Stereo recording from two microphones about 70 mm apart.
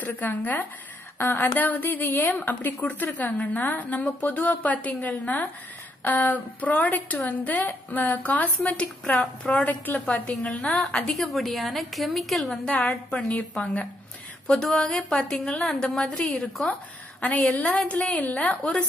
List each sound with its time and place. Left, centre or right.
0.0 s a woman's voice: left
11.1 s a woman's voice: centre
12.6 s a woman's voice: centre
14.5 s a woman's voice: centre
16.1 s a woman's voice: centre